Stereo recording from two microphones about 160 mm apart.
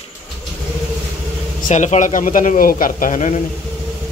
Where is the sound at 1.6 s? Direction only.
50° left (ahead or behind).